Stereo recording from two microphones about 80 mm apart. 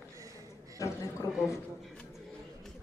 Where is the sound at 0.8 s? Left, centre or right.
Left.